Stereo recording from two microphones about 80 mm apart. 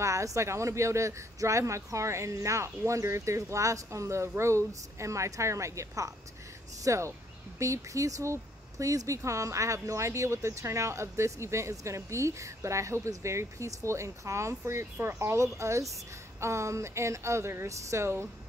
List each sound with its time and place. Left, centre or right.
0.0 s speech: right